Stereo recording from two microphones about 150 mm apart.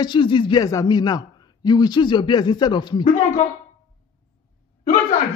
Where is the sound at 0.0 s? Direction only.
30° left (ahead or behind).